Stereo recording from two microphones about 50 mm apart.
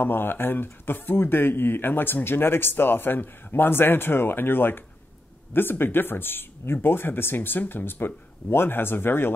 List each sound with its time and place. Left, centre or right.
0.0 s speech: left